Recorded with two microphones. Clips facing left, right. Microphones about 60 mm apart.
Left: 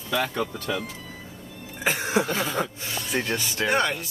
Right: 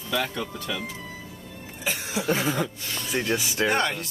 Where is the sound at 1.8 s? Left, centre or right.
Left.